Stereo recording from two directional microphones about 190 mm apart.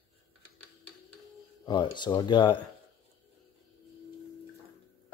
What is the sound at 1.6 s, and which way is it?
Speech, 25° left (ahead or behind).